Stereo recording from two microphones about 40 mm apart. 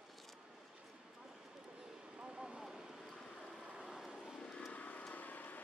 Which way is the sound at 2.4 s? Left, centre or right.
Centre.